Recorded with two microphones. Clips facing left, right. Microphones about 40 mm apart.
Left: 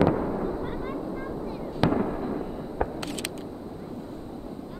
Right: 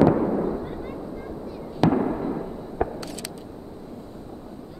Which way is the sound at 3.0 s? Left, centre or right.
Left.